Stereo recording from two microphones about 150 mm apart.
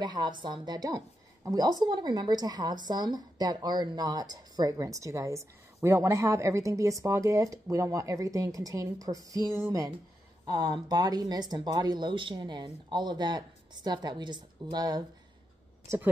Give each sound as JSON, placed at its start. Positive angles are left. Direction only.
{"t": 0.0, "sound": "a woman's voice", "side_deg": -30}